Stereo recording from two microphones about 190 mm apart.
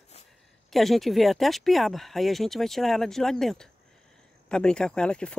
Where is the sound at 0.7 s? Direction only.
Centre (ahead or behind).